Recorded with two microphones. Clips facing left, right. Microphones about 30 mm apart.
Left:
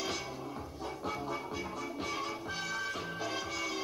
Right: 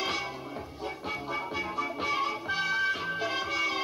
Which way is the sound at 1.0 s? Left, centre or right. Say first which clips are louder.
Right 3 dB; right.